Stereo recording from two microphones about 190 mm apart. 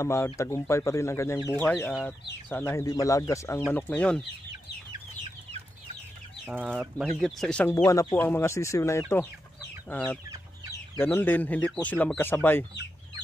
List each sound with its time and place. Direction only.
0.0 s speech: 15° left (ahead or behind)
6.4 s speech: 10° right (ahead or behind)
7.1 s speech: centre (ahead or behind)
7.7 s speech: 20° left (ahead or behind)